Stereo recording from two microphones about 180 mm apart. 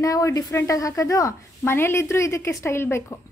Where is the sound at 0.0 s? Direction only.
20° left (ahead or behind).